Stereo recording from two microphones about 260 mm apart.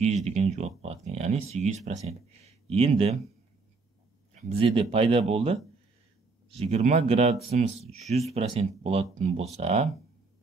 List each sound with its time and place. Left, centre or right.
0.0 s speech: right
4.4 s speech: right